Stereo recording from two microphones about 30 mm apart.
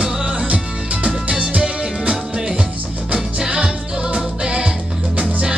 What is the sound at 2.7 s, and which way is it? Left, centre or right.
Music, right.